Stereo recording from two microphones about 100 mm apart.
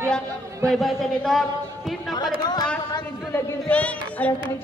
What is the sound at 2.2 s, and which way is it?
Speech, 45° left (ahead or behind).